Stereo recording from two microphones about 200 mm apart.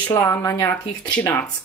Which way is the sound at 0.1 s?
10° left (ahead or behind).